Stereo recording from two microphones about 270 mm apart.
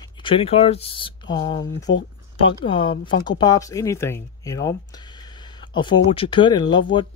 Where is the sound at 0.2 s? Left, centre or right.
Centre.